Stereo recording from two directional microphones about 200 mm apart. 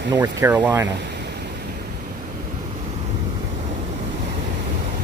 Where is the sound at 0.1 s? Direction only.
20° right (ahead or behind).